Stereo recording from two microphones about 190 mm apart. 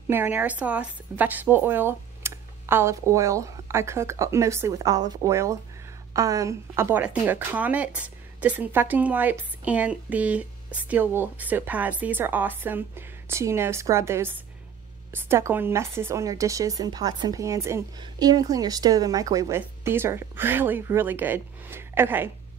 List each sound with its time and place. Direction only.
0.1 s speech: 10° right (ahead or behind)